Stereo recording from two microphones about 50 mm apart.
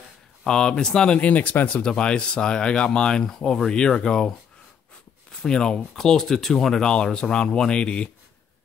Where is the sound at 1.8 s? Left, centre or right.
Centre.